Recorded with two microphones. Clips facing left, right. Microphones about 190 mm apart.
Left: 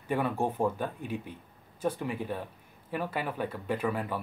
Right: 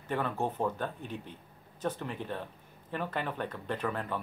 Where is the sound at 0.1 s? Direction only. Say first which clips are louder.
Left 3 dB; 10° left (ahead or behind).